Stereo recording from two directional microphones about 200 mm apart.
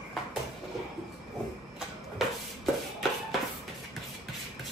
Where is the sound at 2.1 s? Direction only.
Centre (ahead or behind).